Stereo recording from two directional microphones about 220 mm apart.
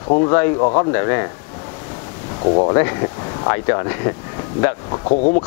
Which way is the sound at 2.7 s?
15° left (ahead or behind).